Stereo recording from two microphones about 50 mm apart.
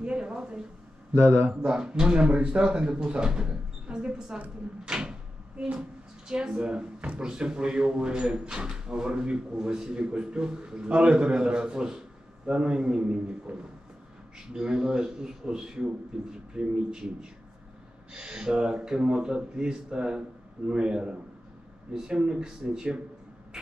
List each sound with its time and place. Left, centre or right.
0.0 s speech: centre
1.1 s speech: right
1.5 s speech: centre